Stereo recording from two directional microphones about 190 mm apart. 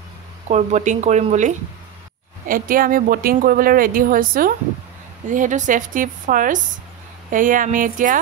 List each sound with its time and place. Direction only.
0.5 s speech: 40° right (ahead or behind)